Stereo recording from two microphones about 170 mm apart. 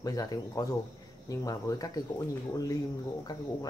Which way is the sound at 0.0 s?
20° left (ahead or behind).